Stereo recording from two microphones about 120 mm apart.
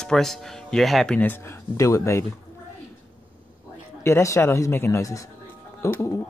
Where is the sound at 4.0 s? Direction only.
25° left (ahead or behind).